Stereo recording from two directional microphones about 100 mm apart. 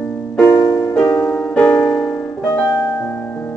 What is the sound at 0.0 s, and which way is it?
Music, 10° left (ahead or behind).